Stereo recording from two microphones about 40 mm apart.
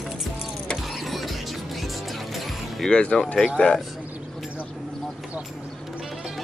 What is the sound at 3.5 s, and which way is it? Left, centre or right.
Speech, centre.